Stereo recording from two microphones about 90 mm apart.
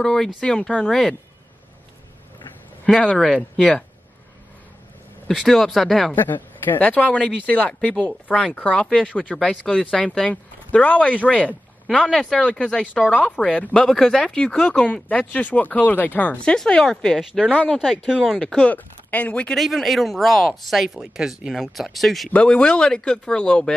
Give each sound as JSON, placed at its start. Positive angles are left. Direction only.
{"t": 0.0, "sound": "speech", "side_deg": 5}
{"t": 2.9, "sound": "speech", "side_deg": 5}
{"t": 5.3, "sound": "speech", "side_deg": 0}
{"t": 6.1, "sound": "speech", "side_deg": 20}
{"t": 15.0, "sound": "speech", "side_deg": 15}
{"t": 17.3, "sound": "speech", "side_deg": -10}
{"t": 18.2, "sound": "speech", "side_deg": 5}
{"t": 19.6, "sound": "speech", "side_deg": 0}
{"t": 22.3, "sound": "speech", "side_deg": 10}